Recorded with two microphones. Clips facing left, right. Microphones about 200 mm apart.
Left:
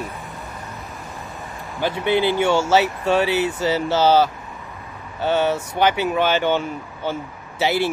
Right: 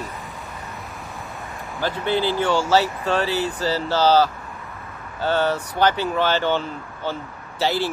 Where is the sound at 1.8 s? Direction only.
15° left (ahead or behind).